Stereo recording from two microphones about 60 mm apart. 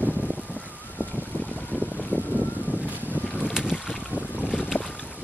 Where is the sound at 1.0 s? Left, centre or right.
Left.